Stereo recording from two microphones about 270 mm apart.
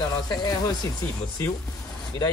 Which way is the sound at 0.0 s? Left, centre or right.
Centre.